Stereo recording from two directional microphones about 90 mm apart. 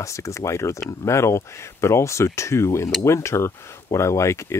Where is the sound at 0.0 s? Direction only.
35° left (ahead or behind).